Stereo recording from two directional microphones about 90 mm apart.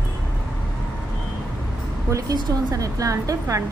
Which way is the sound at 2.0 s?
40° right (ahead or behind).